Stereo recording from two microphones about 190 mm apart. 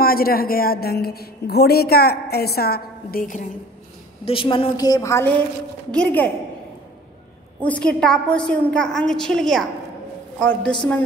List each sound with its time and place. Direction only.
0.0 s a woman's voice: 50° left (ahead or behind)
4.2 s a woman's voice: 30° left (ahead or behind); by 6.3 s 5° left (ahead or behind)
7.6 s a woman's voice: 5° left (ahead or behind)